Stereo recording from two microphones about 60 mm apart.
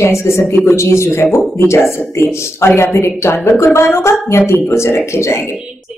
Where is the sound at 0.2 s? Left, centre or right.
Left.